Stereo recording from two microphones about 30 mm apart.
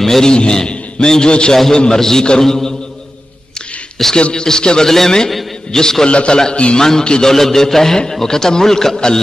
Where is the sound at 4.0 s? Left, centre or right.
Centre.